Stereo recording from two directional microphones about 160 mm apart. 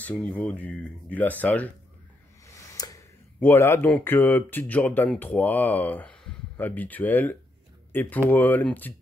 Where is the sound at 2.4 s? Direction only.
20° left (ahead or behind).